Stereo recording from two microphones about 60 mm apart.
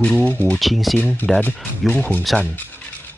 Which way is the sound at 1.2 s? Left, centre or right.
Left.